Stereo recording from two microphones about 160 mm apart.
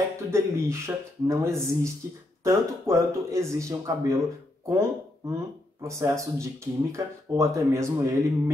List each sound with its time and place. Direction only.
0.3 s speech: 15° right (ahead or behind)